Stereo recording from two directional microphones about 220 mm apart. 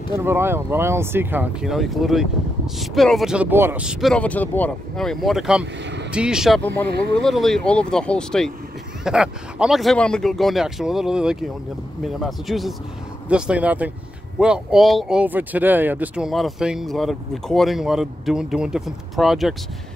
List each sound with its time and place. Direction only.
0.1 s speech: 10° right (ahead or behind)